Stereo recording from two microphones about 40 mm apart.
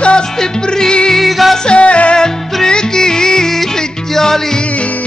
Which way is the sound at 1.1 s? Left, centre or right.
Centre.